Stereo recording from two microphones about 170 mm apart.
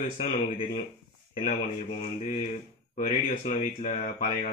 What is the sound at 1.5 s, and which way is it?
Speech, 40° left (ahead or behind).